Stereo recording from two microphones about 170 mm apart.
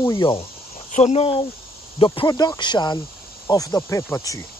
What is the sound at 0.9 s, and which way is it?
Speech, 40° left (ahead or behind).